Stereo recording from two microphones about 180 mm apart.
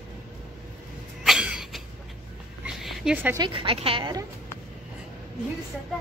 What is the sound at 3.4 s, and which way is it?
Speech, 30° right (ahead or behind).